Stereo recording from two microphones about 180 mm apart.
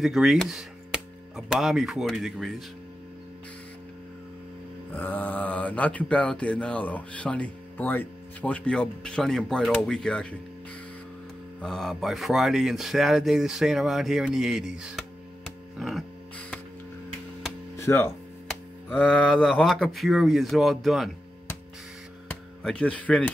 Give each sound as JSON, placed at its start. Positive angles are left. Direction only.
{"t": 0.0, "sound": "speech", "side_deg": 0}
{"t": 4.9, "sound": "mantra", "side_deg": 10}
{"t": 11.6, "sound": "speech", "side_deg": 0}
{"t": 15.8, "sound": "music", "side_deg": 5}
{"t": 17.7, "sound": "speech", "side_deg": 15}
{"t": 22.3, "sound": "speech", "side_deg": 5}